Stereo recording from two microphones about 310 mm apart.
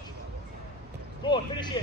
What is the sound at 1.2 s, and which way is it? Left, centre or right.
Speech, centre.